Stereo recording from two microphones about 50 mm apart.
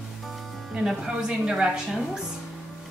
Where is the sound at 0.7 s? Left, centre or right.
Centre.